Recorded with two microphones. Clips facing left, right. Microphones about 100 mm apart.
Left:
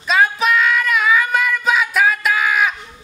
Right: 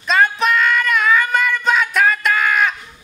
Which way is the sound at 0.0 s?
Centre (ahead or behind).